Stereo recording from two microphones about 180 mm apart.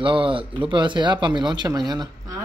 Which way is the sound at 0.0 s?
30° right (ahead or behind).